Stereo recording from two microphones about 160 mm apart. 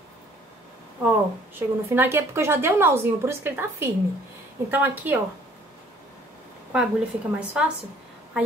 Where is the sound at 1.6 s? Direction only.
15° right (ahead or behind).